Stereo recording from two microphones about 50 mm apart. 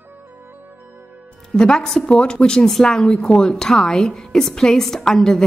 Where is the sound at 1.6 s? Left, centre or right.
Centre.